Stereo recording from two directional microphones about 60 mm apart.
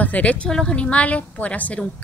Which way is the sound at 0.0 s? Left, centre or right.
Left.